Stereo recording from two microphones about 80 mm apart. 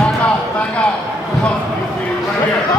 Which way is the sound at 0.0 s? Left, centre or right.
Centre.